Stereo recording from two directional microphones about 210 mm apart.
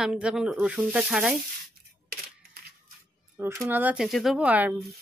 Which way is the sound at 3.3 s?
10° right (ahead or behind).